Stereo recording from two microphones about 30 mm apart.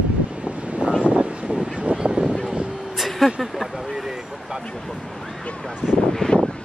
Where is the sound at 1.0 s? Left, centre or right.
Right.